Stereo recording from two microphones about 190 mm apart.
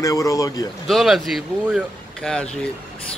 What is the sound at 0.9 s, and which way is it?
Speech, centre (ahead or behind).